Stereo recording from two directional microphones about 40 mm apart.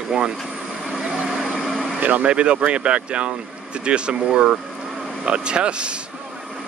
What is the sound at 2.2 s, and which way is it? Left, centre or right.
Speech, right.